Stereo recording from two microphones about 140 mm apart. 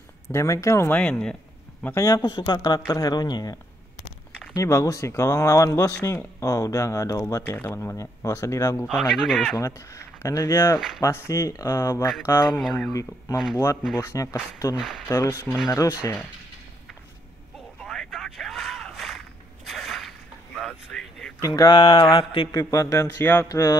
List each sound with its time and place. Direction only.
0.3 s speech: 20° left (ahead or behind)
2.0 s speech: 25° left (ahead or behind)
4.6 s speech: 20° left (ahead or behind)
8.8 s speech: centre (ahead or behind)
9.6 s speech: 25° left (ahead or behind)
12.5 s speech: centre (ahead or behind)
13.9 s speech: 25° left (ahead or behind)
14.8 s speech: 5° right (ahead or behind)
15.0 s speech: 25° left (ahead or behind)
17.8 s a sound: 5° left (ahead or behind)
21.4 s speech: 25° left (ahead or behind)
21.7 s mantra: 35° left (ahead or behind)
22.5 s speech: 25° left (ahead or behind)
23.5 s speech: 25° left (ahead or behind)